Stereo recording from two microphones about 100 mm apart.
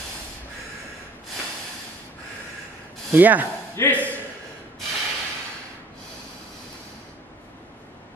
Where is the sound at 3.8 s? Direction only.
30° left (ahead or behind).